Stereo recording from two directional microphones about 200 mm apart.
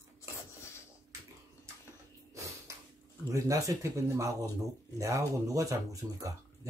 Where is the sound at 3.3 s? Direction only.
15° right (ahead or behind).